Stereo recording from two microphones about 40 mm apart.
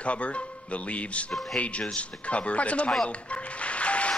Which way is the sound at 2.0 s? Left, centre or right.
Left.